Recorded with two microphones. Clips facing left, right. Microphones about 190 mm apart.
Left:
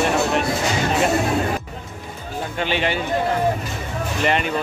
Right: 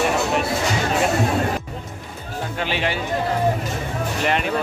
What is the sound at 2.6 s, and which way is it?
Speech, 5° right (ahead or behind).